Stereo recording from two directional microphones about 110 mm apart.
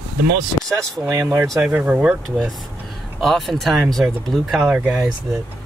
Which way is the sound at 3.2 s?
Centre (ahead or behind).